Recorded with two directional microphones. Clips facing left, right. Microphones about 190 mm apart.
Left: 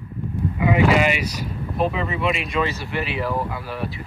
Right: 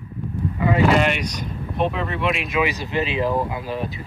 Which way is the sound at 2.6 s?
20° right (ahead or behind).